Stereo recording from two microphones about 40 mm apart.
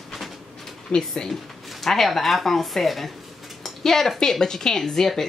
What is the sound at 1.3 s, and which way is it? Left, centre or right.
Speech, centre.